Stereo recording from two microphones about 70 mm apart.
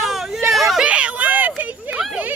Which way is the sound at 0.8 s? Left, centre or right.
Centre.